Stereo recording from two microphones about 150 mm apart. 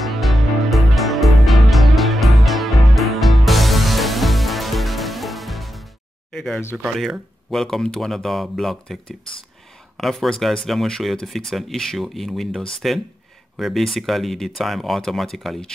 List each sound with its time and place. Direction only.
0.0 s music: centre (ahead or behind)
6.3 s speech: 5° left (ahead or behind)
9.0 s speech: 35° left (ahead or behind)
9.9 s speech: centre (ahead or behind)